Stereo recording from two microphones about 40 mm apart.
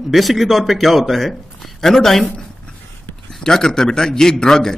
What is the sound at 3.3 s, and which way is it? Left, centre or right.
A man's voice, centre.